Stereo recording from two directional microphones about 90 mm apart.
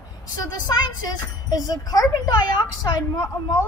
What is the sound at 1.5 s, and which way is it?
A woman's voice, 45° left (ahead or behind).